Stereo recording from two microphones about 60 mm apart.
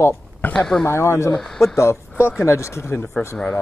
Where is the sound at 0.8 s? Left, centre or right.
Left.